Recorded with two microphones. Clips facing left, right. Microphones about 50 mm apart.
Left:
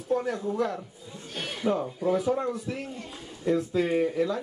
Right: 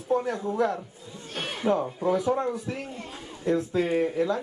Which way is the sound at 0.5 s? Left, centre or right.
Centre.